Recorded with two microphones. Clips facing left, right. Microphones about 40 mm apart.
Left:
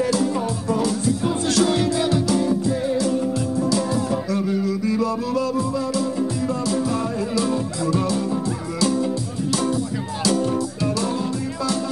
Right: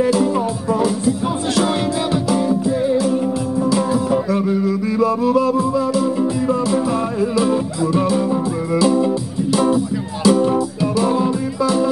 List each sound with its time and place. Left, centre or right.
0.0 s music: centre